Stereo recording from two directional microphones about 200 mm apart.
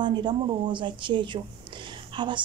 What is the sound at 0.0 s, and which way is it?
A woman's voice, 20° right (ahead or behind).